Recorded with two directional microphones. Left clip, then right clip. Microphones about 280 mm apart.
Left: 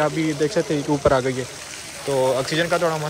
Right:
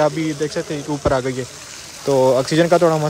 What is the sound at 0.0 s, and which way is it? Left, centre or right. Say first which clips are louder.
A man's voice: right 2 dB; centre.